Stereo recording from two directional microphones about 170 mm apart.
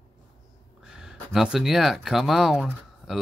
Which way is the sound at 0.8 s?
5° right (ahead or behind).